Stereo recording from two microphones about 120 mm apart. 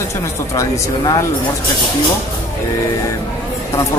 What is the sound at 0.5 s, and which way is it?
Speech, 25° left (ahead or behind).